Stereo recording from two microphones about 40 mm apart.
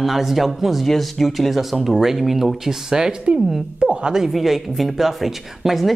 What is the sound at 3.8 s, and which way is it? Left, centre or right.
Speech, right.